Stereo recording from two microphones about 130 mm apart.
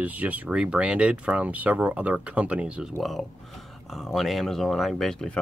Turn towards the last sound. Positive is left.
turn(degrees=5)  # may be behind; listen again after turning